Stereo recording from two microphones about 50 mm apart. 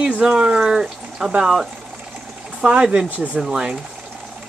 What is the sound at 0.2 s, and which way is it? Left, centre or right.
Speech, centre.